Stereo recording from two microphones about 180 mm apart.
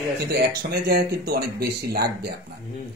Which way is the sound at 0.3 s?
60° right (ahead or behind).